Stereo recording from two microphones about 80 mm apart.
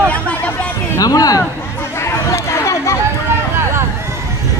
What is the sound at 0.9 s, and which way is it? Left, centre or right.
Speech, left.